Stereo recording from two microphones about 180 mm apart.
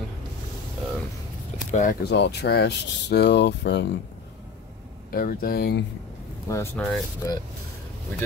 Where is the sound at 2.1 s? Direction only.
70° left (ahead or behind).